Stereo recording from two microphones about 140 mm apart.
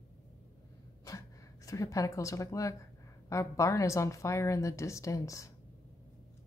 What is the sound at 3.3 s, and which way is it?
A woman's voice, 20° left (ahead or behind).